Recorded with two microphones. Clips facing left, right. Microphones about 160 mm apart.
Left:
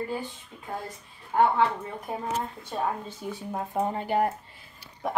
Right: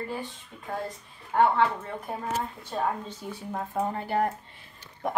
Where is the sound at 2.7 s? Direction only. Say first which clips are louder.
Right 1 dB; 10° left (ahead or behind).